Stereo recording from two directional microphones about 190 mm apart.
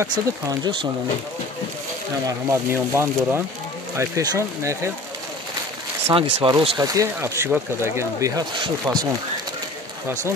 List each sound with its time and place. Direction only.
0.0 s speech: 20° right (ahead or behind)
2.2 s speech: 15° right (ahead or behind)
6.1 s speech: 25° right (ahead or behind)